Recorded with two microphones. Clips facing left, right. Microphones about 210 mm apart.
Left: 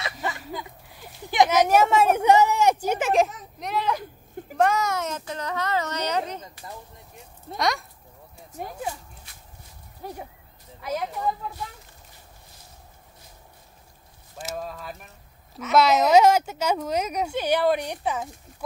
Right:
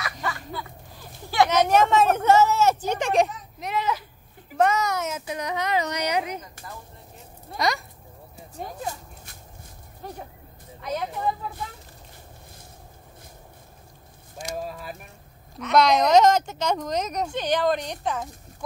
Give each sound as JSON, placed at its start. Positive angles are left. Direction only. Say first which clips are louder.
{"t": 0.0, "sound": "a sound", "louder": "even", "side_deg": 25}
{"t": 4.6, "sound": "speech", "louder": "even", "side_deg": 0}
{"t": 7.5, "sound": "speech", "louder": "even", "side_deg": 0}
{"t": 8.6, "sound": "speech", "louder": "even", "side_deg": 10}
{"t": 10.0, "sound": "speech", "louder": "left 1 dB", "side_deg": 10}
{"t": 14.7, "sound": "speech", "louder": "right 1 dB", "side_deg": -10}
{"t": 15.6, "sound": "speech", "louder": "even", "side_deg": 5}